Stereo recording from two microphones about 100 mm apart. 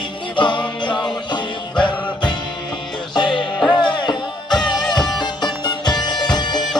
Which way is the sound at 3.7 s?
45° left (ahead or behind).